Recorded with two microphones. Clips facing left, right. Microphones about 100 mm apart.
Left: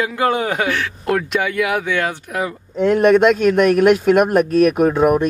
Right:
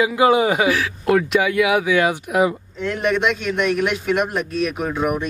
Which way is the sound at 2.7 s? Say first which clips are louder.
Left 12 dB; 50° left (ahead or behind).